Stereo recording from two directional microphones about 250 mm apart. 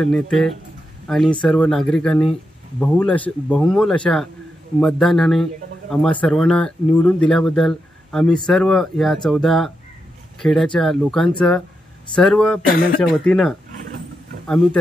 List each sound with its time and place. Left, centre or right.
0.0 s speech: centre